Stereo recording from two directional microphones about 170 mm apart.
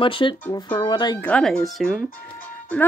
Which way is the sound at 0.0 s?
30° left (ahead or behind).